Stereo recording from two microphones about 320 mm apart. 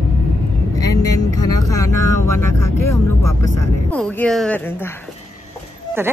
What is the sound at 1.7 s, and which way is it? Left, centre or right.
Vehicle, left.